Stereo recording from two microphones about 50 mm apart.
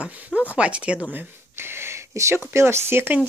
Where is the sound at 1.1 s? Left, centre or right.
Right.